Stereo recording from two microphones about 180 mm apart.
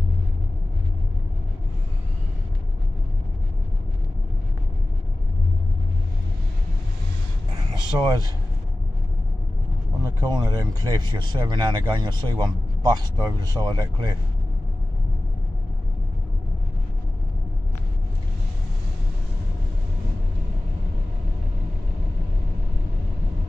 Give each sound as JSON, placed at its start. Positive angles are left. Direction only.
{"t": 7.9, "sound": "speech", "side_deg": -15}
{"t": 10.0, "sound": "speech", "side_deg": -20}